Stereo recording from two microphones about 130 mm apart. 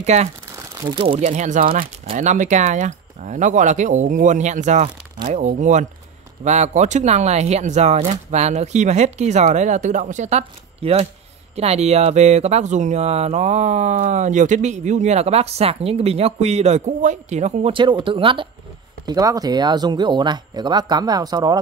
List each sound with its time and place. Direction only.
0.0 s speech: 60° right (ahead or behind)
0.6 s crumpling: 25° right (ahead or behind)
0.9 s speech: 40° right (ahead or behind)
1.2 s speech: 70° right (ahead or behind); by 1.9 s 90° right
2.1 s speech: 70° right (ahead or behind)
17.7 s speech: 40° right (ahead or behind)
19.0 s speech: 30° right (ahead or behind)